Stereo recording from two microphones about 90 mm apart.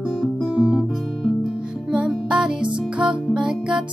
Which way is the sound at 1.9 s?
10° right (ahead or behind).